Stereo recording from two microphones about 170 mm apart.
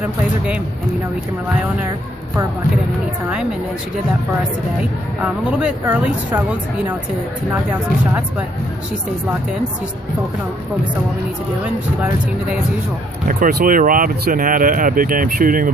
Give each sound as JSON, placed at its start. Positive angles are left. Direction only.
{"t": 5.2, "sound": "speech", "side_deg": -5}
{"t": 13.3, "sound": "speech", "side_deg": -60}